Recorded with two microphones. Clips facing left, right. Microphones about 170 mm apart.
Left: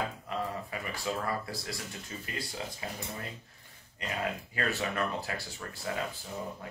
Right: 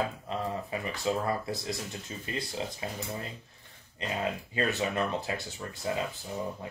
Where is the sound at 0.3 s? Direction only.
25° right (ahead or behind).